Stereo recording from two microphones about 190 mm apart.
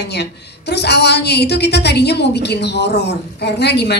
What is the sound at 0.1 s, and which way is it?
A woman's voice, 60° left (ahead or behind).